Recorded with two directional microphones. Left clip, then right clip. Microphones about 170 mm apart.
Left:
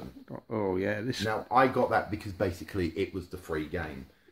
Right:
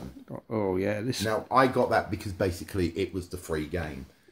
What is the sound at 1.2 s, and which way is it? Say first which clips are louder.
Speech: right 1 dB; 45° right (ahead or behind).